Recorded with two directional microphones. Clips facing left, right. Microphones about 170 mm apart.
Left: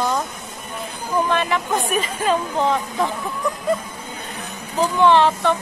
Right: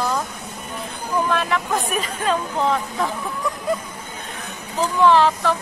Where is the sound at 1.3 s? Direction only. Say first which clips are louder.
Left 1 dB; centre (ahead or behind).